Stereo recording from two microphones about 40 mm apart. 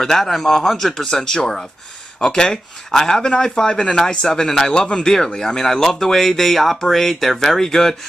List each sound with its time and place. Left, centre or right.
0.0 s speech: centre